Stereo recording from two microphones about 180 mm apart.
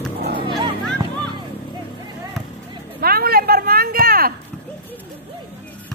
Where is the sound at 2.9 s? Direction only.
55° right (ahead or behind).